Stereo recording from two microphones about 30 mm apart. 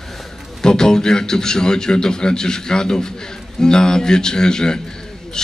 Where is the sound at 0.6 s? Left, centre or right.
Left.